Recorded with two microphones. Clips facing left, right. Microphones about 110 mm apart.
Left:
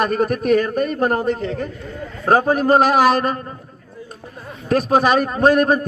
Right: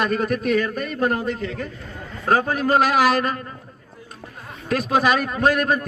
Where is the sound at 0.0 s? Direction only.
45° left (ahead or behind).